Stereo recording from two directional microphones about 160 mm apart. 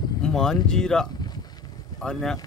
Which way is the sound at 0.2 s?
5° left (ahead or behind).